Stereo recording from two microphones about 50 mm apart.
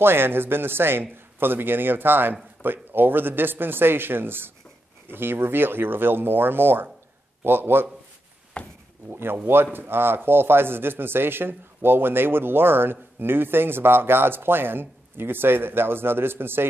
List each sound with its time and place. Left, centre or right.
0.0 s speech: right
8.6 s speech: left
9.1 s speech: right